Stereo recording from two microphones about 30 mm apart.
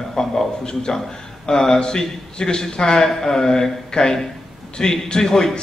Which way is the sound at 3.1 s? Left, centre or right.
Centre.